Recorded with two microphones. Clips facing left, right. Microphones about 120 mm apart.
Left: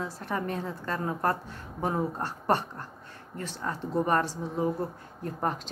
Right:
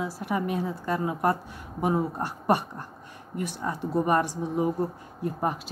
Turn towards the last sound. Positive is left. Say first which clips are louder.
# right 3 dB
turn(degrees=-10)  # may be behind; listen again after turning